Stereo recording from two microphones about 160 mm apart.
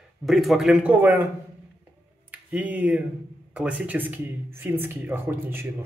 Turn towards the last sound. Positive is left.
turn(degrees=-15)  # may be behind; listen again after turning